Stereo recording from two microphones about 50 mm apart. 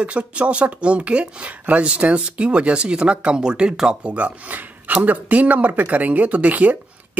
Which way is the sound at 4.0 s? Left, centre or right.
Right.